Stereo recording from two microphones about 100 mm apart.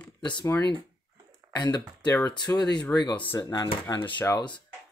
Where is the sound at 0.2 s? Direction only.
50° left (ahead or behind).